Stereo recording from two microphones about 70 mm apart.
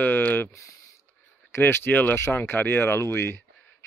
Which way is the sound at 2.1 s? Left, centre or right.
Left.